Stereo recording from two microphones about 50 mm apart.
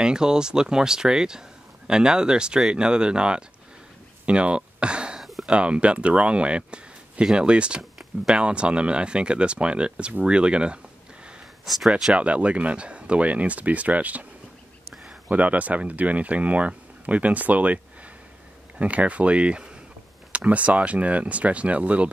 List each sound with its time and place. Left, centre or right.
0.0 s speech: centre
4.3 s a sound: right
5.2 s a sound: centre
5.5 s speech: right
11.6 s speech: centre
12.2 s speech: right
15.2 s speech: right
18.8 s speech: right